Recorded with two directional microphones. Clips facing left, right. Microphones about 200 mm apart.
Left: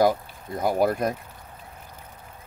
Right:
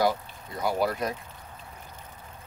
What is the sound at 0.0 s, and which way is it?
Speech, 50° left (ahead or behind).